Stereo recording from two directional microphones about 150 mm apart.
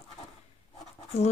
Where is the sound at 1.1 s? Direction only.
45° left (ahead or behind).